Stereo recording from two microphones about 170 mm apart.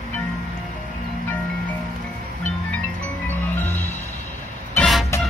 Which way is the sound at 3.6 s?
10° left (ahead or behind).